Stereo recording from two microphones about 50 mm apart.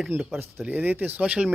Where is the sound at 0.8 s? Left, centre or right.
Right.